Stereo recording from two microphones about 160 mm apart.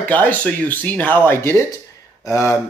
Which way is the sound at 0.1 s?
10° left (ahead or behind).